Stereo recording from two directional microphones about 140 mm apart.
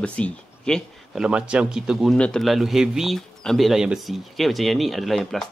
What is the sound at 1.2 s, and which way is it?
Speech, 5° right (ahead or behind).